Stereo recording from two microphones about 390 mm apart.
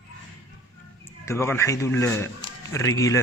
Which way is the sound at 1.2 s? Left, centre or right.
Centre.